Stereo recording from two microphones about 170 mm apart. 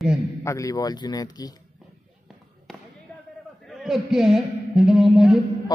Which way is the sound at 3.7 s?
Centre (ahead or behind).